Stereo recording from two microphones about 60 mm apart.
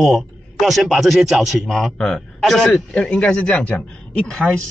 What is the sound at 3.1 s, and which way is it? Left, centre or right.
A man's voice, left.